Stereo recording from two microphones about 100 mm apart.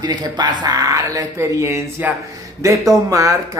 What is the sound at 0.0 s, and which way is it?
Speech, 45° right (ahead or behind).